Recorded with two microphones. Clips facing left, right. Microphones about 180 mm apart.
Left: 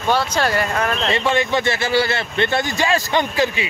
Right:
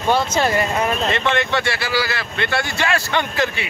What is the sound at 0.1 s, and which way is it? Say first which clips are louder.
Speech: right 1 dB; 10° right (ahead or behind).